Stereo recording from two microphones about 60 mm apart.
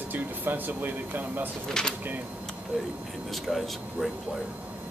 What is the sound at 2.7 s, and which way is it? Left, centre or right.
Speech, centre.